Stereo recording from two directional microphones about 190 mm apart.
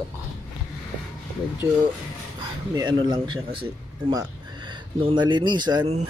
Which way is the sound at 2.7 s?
25° right (ahead or behind).